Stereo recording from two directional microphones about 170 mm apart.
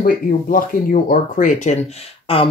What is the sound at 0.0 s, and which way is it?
Speech, 55° left (ahead or behind).